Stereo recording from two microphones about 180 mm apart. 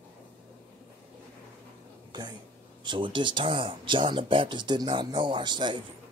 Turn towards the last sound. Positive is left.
turn(degrees=-25)  # may be behind; listen again after turning